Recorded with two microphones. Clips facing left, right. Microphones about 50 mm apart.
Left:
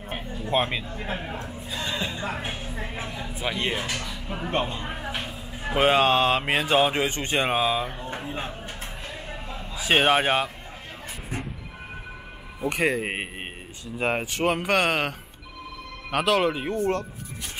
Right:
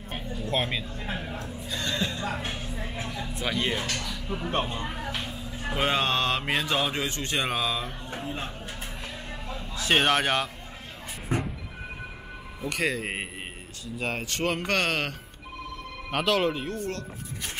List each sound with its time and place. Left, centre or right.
0.1 s speech: centre
1.7 s speech: centre
9.5 s a sound: centre
12.6 s speech: left
14.3 s speech: centre
16.6 s speech: left